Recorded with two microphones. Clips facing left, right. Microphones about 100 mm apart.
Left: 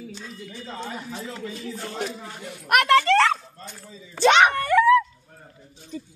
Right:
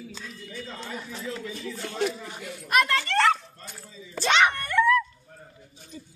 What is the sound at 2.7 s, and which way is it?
Speech, 75° left (ahead or behind).